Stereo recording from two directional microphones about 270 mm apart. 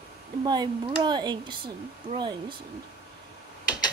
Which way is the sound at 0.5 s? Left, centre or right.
Centre.